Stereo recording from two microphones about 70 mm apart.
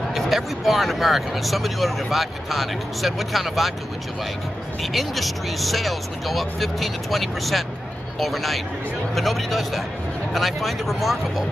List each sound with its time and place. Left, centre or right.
0.1 s speech: centre
4.9 s speech: centre